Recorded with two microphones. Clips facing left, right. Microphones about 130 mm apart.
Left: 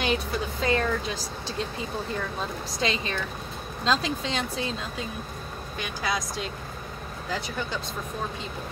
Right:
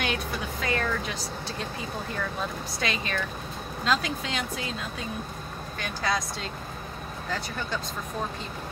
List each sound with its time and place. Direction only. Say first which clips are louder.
0.0 s speech: left 3 dB; 30° left (ahead or behind)
2.8 s speech: left 2 dB; 25° left (ahead or behind)
5.8 s speech: right 1 dB; 20° left (ahead or behind)